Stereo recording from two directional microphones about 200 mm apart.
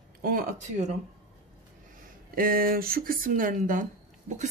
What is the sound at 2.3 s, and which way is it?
A woman's voice, 45° right (ahead or behind).